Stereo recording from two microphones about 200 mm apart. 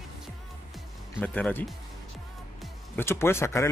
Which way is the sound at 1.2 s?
5° left (ahead or behind).